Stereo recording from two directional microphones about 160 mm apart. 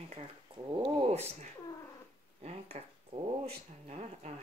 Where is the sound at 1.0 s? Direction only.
40° right (ahead or behind).